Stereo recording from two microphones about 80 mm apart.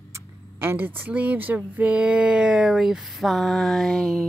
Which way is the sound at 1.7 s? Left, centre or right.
Centre.